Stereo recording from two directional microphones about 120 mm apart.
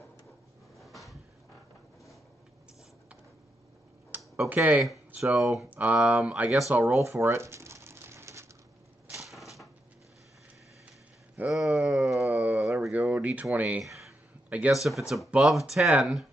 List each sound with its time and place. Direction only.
0.7 s drawer open or close: centre (ahead or behind)
4.4 s speech: 15° right (ahead or behind)
5.2 s speech: centre (ahead or behind)
7.0 s crumpling: 20° right (ahead or behind)
9.1 s a sound: centre (ahead or behind)
11.5 s a sound: centre (ahead or behind)
14.5 s speech: 5° right (ahead or behind)